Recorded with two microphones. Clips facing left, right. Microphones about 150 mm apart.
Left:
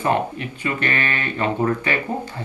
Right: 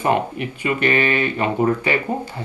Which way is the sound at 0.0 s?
15° right (ahead or behind).